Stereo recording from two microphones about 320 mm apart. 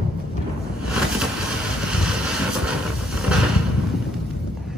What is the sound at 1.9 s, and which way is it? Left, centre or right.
Vehicle, centre.